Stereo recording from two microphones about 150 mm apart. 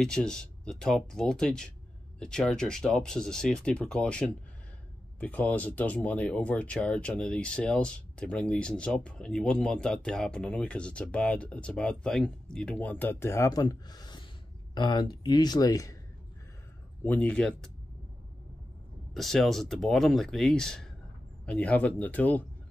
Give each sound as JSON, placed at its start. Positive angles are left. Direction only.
{"t": 0.0, "sound": "speech", "side_deg": 5}
{"t": 17.0, "sound": "speech", "side_deg": 10}
{"t": 19.1, "sound": "speech", "side_deg": 0}